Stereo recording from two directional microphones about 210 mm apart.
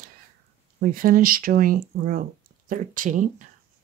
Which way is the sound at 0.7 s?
40° right (ahead or behind).